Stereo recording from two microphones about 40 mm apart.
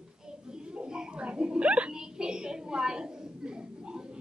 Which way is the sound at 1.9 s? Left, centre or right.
Centre.